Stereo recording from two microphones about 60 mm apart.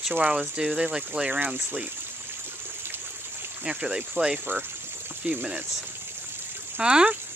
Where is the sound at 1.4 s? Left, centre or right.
Right.